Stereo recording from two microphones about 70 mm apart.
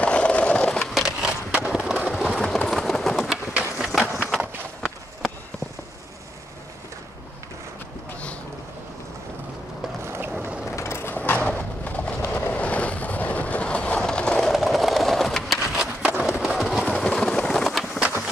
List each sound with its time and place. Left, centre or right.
0.0 s skateboard: centre
0.9 s skateboard: centre
2.0 s vehicle: centre
3.7 s run: centre
4.4 s a sound: centre
10.0 s skateboard: right
10.8 s mechanisms: left
11.4 s horse: left
12.3 s train: left
14.4 s a sound: centre